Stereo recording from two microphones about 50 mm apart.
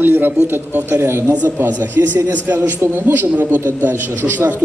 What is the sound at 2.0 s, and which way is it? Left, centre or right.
Speech, right.